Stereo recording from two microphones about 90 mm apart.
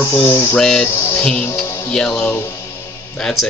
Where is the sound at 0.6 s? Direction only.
10° left (ahead or behind).